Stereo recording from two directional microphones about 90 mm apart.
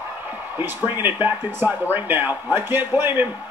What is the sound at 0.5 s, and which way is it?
A man's voice, 25° right (ahead or behind).